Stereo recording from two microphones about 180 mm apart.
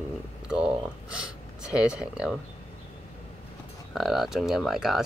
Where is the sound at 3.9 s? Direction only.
Centre (ahead or behind).